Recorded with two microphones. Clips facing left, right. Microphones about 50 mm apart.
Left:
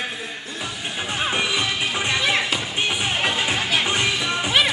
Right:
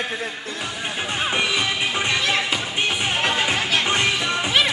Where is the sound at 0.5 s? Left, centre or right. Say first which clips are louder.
Even; right.